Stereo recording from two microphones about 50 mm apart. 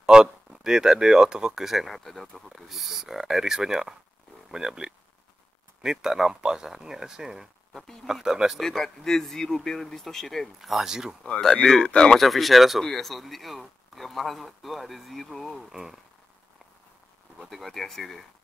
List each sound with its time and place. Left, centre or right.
0.0 s a sound: centre
0.5 s speech: centre
7.7 s speech: centre
8.1 s speech: centre
8.6 s speech: centre
11.6 s speech: centre
12.2 s speech: centre
15.7 s speech: centre
17.4 s speech: centre